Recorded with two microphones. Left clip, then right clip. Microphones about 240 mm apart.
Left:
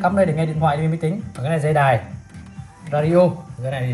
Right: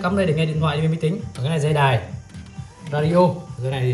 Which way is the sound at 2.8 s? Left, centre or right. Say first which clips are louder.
Left 2 dB; centre.